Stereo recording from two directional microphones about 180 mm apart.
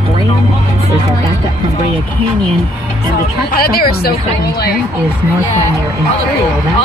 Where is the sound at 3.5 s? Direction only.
55° left (ahead or behind).